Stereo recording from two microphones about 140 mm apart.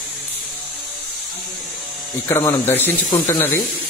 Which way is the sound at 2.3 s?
20° left (ahead or behind).